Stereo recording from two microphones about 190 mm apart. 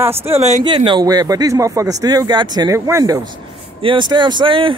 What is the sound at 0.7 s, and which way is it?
Speech, 25° right (ahead or behind).